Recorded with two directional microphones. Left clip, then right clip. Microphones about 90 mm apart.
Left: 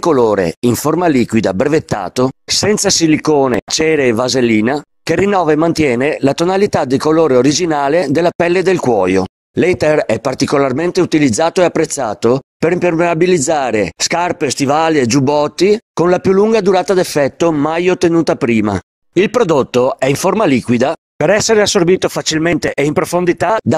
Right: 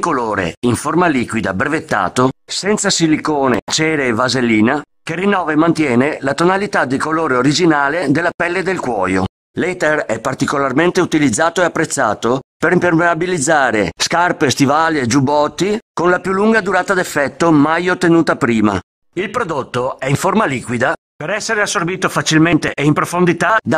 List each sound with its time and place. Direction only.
0.0 s speech: 55° left (ahead or behind); by 9.2 s 35° left (ahead or behind)
9.6 s speech: 20° left (ahead or behind)
19.1 s speech: 40° left (ahead or behind)
21.2 s speech: 50° left (ahead or behind)